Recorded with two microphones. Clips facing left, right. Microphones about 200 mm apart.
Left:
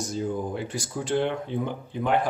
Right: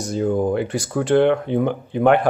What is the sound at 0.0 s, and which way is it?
Speech, 65° right (ahead or behind).